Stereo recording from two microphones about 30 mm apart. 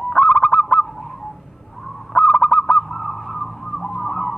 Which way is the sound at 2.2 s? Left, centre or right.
Left.